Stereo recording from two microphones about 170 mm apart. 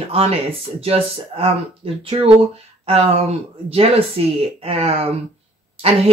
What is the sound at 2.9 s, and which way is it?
Speech, 35° right (ahead or behind).